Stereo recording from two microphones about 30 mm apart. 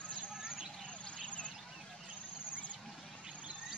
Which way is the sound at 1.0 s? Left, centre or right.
Left.